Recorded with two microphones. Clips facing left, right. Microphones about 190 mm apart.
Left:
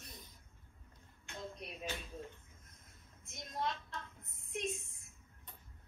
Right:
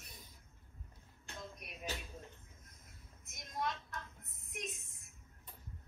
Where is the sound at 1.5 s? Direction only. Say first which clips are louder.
Left 4 dB; 30° left (ahead or behind).